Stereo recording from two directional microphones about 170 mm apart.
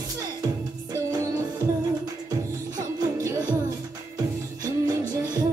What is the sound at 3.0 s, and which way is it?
Music, 25° right (ahead or behind).